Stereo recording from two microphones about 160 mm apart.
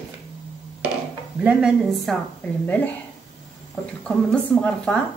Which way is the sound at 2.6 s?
10° left (ahead or behind).